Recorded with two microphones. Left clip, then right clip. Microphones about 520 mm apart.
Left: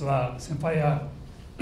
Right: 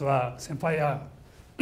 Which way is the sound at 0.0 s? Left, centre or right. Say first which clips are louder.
Right 1 dB; right.